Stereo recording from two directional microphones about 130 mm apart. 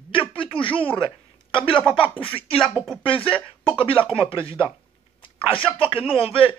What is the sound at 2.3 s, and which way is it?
Speech, 45° left (ahead or behind).